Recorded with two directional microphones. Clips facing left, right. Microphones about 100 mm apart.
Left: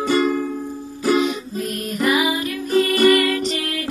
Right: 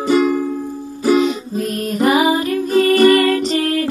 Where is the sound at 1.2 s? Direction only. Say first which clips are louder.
Right 4 dB; 35° right (ahead or behind).